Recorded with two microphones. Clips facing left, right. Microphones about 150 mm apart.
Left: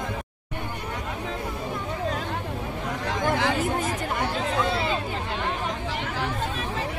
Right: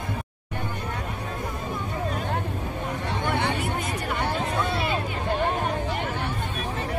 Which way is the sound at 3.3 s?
40° left (ahead or behind).